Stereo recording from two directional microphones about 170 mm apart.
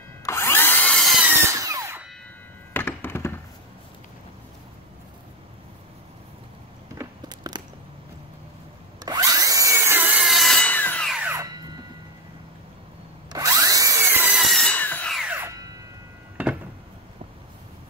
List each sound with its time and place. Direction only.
0.2 s drill: 15° left (ahead or behind)
1.3 s tools: 15° right (ahead or behind)
2.7 s thunk: 10° left (ahead or behind)
7.0 s biting: 25° right (ahead or behind)
9.0 s wood: 20° right (ahead or behind); by 11.1 s 10° left (ahead or behind)
11.1 s tools: 10° right (ahead or behind)
11.5 s a sound: 25° right (ahead or behind)
13.3 s drill: 20° right (ahead or behind); by 15.1 s 10° left (ahead or behind)
15.1 s music: 10° right (ahead or behind)
16.4 s a sound: 10° right (ahead or behind)